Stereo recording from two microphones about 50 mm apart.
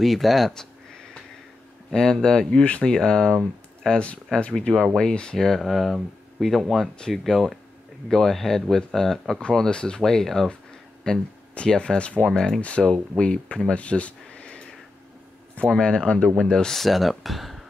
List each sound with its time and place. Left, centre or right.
0.0 s speech: centre
1.9 s speech: centre
9.4 s speech: centre
10.0 s speech: centre
11.1 s speech: centre
12.3 s speech: centre
12.5 s speech: left
13.7 s a sound: left
15.7 s speech: centre